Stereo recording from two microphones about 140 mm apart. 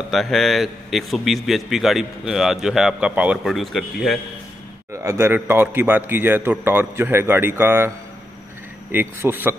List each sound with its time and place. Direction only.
0.1 s a man's voice: centre (ahead or behind)
4.9 s a man's voice: 20° right (ahead or behind)
8.9 s a man's voice: 15° right (ahead or behind)